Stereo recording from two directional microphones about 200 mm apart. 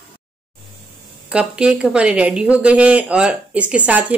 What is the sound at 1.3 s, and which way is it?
Speech, 5° right (ahead or behind).